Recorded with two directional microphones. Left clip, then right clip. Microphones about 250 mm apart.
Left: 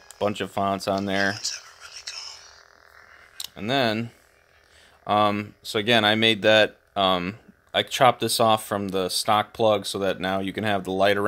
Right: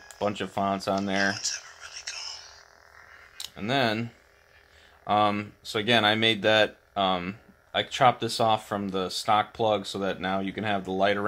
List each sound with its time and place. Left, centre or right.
0.2 s speech: left
1.3 s frog: centre
3.3 s speech: left